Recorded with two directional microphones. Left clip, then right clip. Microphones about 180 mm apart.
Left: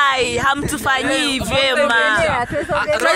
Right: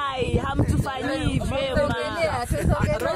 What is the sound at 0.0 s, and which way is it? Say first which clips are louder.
Speech: left 10 dB; 10° left (ahead or behind).